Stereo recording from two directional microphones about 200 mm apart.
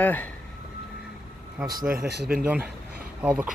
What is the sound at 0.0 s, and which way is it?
Speech, 10° left (ahead or behind).